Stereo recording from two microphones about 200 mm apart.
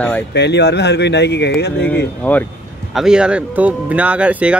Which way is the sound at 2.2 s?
5° left (ahead or behind).